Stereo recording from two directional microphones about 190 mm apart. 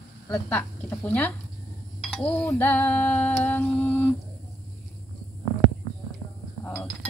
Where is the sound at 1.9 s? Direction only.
5° left (ahead or behind).